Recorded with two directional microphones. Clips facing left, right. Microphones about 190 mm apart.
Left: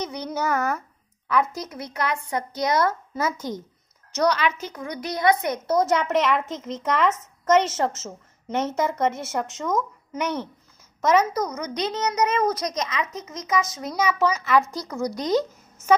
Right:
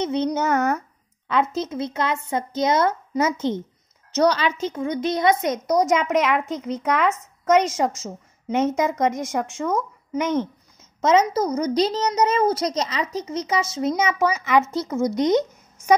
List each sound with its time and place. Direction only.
0.0 s a woman's voice: 25° right (ahead or behind)